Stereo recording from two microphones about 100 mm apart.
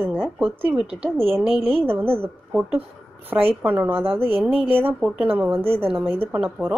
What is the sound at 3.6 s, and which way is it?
A woman's voice, 20° right (ahead or behind).